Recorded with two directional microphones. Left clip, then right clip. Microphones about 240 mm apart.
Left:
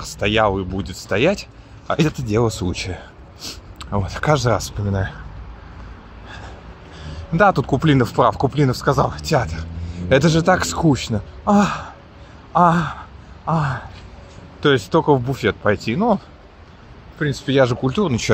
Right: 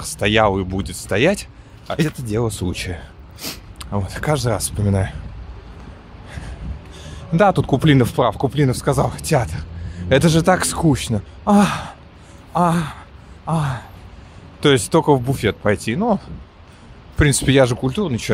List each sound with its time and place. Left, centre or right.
0.0 s speech: centre
1.9 s speech: centre
4.8 s speech: right
7.3 s a man's voice: centre
17.5 s speech: centre